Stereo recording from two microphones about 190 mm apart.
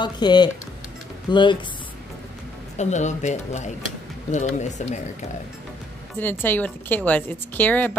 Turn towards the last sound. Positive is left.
turn(degrees=10)  # may be behind; listen again after turning